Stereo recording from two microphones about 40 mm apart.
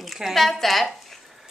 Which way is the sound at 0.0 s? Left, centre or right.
Centre.